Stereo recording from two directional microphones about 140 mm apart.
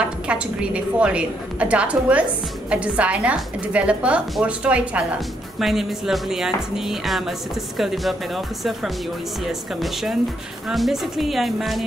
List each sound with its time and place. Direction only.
0.0 s a woman's voice: 10° right (ahead or behind)